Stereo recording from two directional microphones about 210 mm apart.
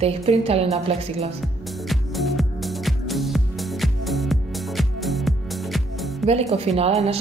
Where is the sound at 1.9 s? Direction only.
Centre (ahead or behind).